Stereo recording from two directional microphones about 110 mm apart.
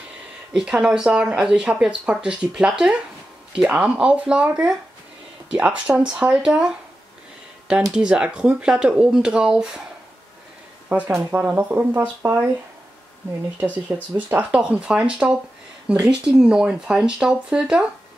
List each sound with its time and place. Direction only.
0.5 s speech: 5° right (ahead or behind)
7.9 s speech: 10° right (ahead or behind)
10.9 s speech: 20° right (ahead or behind)
14.1 s speech: 10° right (ahead or behind)